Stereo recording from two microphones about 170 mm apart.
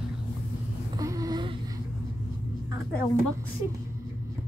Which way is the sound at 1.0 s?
20° right (ahead or behind).